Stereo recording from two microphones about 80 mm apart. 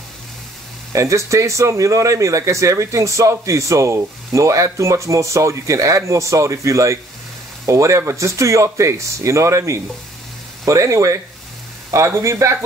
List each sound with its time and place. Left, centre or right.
0.9 s speech: right